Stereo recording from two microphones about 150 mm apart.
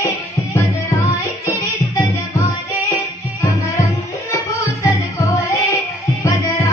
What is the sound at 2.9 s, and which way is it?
Music, 20° left (ahead or behind).